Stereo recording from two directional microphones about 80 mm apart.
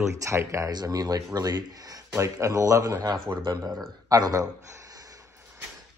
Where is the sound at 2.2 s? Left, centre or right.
Right.